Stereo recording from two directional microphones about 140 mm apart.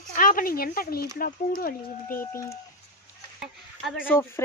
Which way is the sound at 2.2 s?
20° left (ahead or behind).